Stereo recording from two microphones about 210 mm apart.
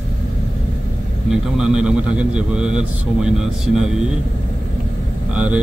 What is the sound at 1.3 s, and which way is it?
A man's voice, 5° right (ahead or behind).